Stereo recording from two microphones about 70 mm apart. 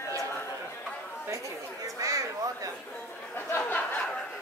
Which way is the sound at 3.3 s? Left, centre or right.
Left.